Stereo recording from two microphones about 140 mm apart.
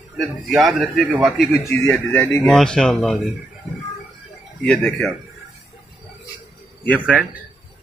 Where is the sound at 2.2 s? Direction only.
15° left (ahead or behind).